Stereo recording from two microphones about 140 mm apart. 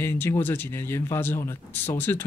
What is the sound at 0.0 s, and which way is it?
Speech, 15° left (ahead or behind).